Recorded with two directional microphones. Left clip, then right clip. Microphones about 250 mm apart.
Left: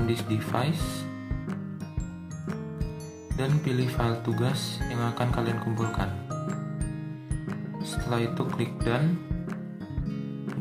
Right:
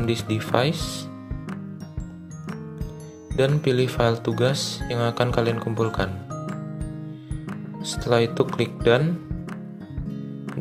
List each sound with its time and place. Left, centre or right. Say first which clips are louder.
0.0 s speech: right 4 dB; right
3.3 s speech: right 9 dB; right
6.3 s music: right 1 dB; centre
7.8 s speech: right 9 dB; right
10.0 s music: right 2 dB; centre